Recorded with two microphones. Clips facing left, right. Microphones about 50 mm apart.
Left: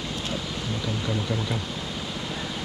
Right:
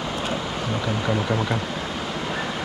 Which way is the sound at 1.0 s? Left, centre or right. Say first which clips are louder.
Right 6 dB; right.